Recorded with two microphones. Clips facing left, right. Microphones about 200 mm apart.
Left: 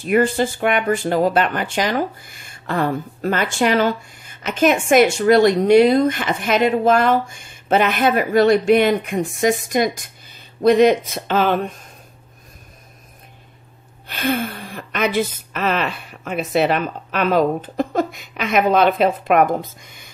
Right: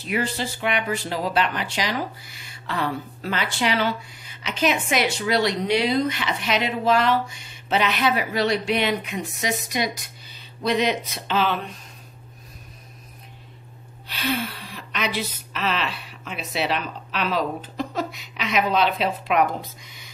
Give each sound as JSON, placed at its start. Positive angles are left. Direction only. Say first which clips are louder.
{"t": 0.0, "sound": "speech", "louder": "left 9 dB", "side_deg": 50}
{"t": 14.0, "sound": "speech", "louder": "left 5 dB", "side_deg": 50}